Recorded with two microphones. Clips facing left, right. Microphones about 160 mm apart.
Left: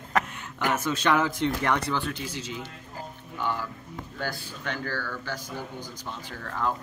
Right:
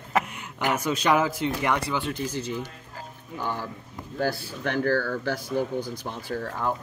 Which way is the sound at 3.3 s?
45° right (ahead or behind).